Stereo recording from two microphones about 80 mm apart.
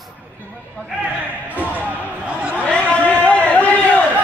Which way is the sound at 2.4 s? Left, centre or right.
Centre.